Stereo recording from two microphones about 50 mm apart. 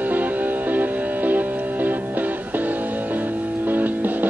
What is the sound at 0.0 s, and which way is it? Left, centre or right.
Music, right.